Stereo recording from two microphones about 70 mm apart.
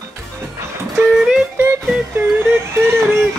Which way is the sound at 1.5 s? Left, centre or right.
Right.